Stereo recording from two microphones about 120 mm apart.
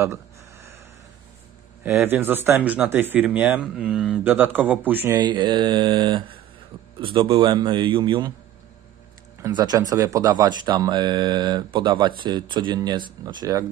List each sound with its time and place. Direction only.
2.0 s speech: 15° right (ahead or behind)
5.1 s a man's voice: 40° right (ahead or behind)
9.5 s speech: 35° right (ahead or behind)